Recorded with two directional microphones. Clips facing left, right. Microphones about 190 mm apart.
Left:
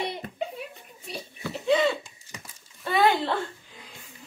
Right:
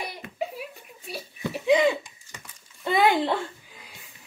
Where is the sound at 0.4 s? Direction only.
5° right (ahead or behind).